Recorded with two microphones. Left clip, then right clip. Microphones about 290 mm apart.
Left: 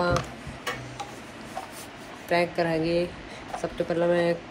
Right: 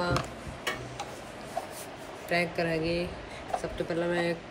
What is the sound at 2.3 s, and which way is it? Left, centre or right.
Speech, centre.